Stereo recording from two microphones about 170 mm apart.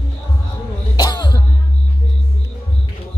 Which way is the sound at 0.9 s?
25° left (ahead or behind).